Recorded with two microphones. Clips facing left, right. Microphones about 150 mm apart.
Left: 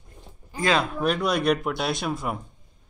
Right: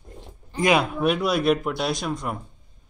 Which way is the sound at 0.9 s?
5° right (ahead or behind).